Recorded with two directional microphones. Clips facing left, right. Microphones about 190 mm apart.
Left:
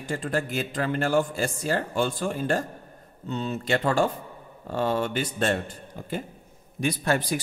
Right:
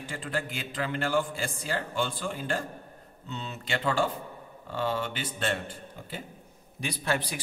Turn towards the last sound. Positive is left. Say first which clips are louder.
# left 6 dB
turn(degrees=45)  # may be behind; listen again after turning